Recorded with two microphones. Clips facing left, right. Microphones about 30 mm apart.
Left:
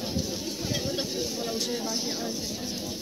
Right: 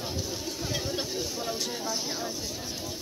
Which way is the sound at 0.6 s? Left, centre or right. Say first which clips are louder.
Left 2 dB; left.